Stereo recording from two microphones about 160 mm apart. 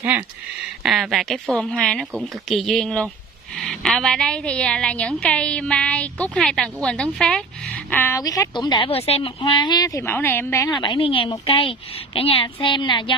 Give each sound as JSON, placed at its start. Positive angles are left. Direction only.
{"t": 0.8, "sound": "a woman's voice", "side_deg": 0}